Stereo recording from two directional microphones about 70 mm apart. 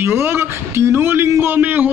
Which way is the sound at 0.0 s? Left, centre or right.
Right.